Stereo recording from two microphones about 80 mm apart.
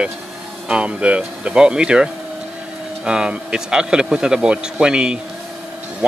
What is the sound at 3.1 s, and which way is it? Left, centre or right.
Speech, centre.